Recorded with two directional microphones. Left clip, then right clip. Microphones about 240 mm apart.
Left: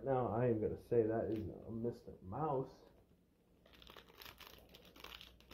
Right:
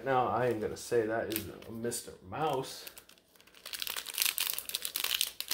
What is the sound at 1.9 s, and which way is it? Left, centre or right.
Speech, centre.